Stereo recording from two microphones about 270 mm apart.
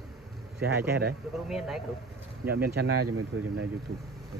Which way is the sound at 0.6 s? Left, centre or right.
Right.